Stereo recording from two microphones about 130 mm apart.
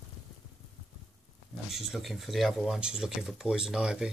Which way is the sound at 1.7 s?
Centre (ahead or behind).